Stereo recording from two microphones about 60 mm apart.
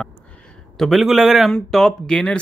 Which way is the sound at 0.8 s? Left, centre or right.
Centre.